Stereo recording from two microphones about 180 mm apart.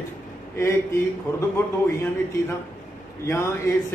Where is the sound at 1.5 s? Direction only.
15° left (ahead or behind).